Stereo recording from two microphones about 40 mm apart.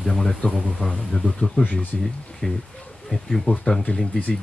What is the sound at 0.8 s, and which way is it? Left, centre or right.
Speech, left.